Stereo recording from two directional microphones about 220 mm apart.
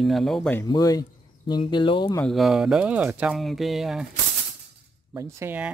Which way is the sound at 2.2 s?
Centre (ahead or behind).